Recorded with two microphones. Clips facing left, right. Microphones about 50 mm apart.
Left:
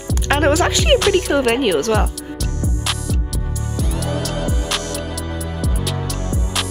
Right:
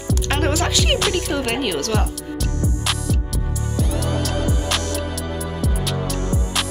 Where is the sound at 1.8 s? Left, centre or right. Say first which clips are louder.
Left 5 dB; left.